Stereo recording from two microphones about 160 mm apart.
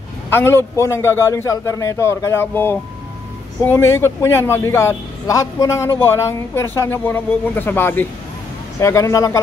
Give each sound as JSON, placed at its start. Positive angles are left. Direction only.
{"t": 0.3, "sound": "a man's voice", "side_deg": 15}